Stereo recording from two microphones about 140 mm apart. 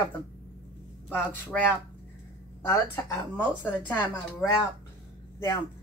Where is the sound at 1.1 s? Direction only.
15° left (ahead or behind).